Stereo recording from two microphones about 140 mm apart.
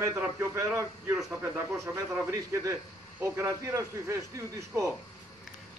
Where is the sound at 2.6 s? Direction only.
20° right (ahead or behind).